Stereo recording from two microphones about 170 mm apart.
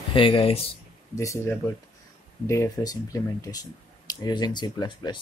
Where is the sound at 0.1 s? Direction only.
30° left (ahead or behind).